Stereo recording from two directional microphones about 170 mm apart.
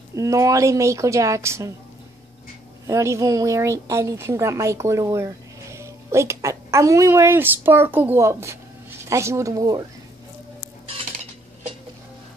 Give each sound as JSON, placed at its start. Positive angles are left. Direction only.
{"t": 0.1, "sound": "a woman's voice", "side_deg": -20}
{"t": 2.9, "sound": "a woman's voice", "side_deg": -15}